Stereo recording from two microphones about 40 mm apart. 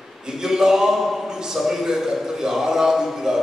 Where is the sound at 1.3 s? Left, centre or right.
Centre.